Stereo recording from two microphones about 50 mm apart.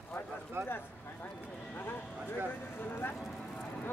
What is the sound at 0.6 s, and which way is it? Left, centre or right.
Speech, right.